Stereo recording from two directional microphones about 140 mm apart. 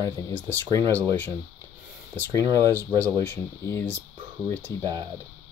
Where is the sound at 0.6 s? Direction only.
30° right (ahead or behind).